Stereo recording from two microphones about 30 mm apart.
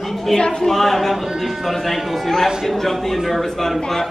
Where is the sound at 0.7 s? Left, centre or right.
Centre.